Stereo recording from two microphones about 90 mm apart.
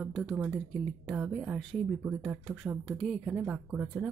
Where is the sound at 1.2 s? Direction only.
15° right (ahead or behind).